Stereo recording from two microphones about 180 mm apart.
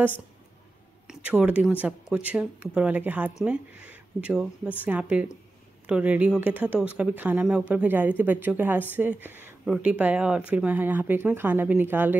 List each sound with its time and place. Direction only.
1.0 s speech: 5° right (ahead or behind)